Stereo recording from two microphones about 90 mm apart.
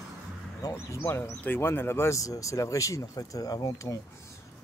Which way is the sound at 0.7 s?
30° left (ahead or behind).